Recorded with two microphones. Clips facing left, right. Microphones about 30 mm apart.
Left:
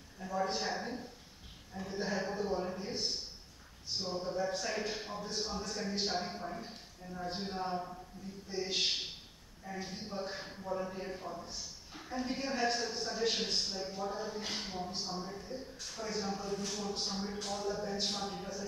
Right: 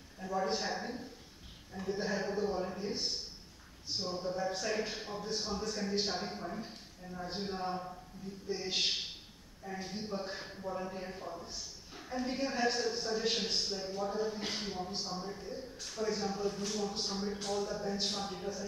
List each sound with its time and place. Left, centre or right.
0.2 s a man's voice: centre